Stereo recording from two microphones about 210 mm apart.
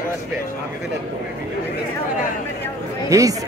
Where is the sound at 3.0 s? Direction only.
15° right (ahead or behind).